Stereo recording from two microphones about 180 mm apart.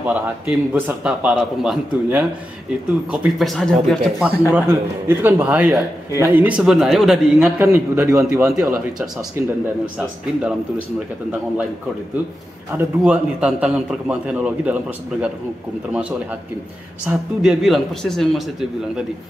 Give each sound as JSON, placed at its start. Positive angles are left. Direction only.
{"t": 0.0, "sound": "a man's voice", "side_deg": -10}
{"t": 7.5, "sound": "a man's voice", "side_deg": -15}
{"t": 8.5, "sound": "speech", "side_deg": -5}
{"t": 12.7, "sound": "a man's voice", "side_deg": -5}
{"t": 15.9, "sound": "a man's voice", "side_deg": -5}